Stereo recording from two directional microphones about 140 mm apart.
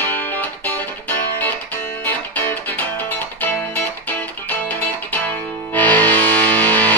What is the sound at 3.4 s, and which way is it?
Music, 15° left (ahead or behind).